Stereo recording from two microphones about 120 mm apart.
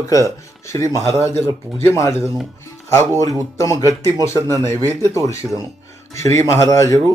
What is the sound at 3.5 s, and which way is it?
Speech, 25° left (ahead or behind).